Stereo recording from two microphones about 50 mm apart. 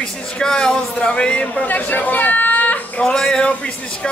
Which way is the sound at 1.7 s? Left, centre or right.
Left.